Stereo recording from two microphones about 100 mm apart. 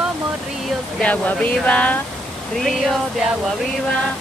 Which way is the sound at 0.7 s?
10° left (ahead or behind).